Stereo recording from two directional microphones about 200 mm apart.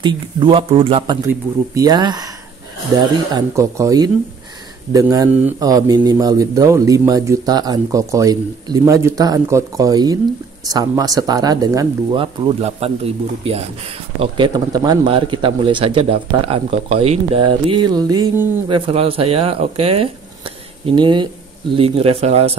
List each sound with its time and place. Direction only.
0.0 s speech: 25° right (ahead or behind)
3.3 s speech: 15° right (ahead or behind)
18.7 s speech: 30° right (ahead or behind)